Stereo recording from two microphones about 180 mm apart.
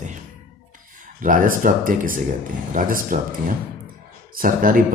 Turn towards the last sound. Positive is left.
turn(degrees=-50)  # may be behind; listen again after turning